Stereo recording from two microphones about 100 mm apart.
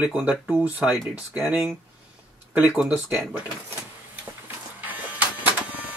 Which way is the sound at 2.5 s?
15° right (ahead or behind).